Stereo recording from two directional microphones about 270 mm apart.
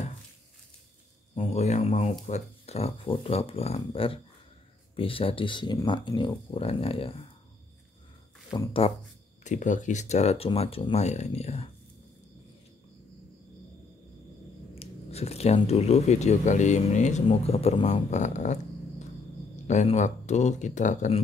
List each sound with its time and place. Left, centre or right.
1.3 s speech: left
8.5 s speech: centre
14.8 s speech: left
19.7 s speech: left